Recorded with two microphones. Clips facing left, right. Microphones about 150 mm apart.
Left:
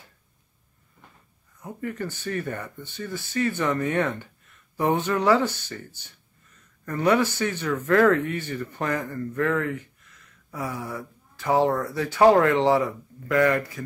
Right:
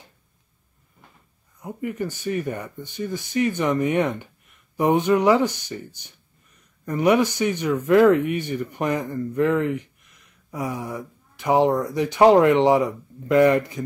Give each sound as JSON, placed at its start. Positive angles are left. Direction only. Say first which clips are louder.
{"t": 1.6, "sound": "speech", "louder": "right 3 dB", "side_deg": -15}